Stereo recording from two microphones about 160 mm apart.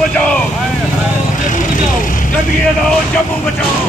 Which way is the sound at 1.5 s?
55° left (ahead or behind).